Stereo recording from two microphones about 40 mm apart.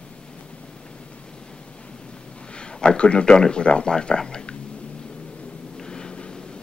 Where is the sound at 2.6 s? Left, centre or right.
Left.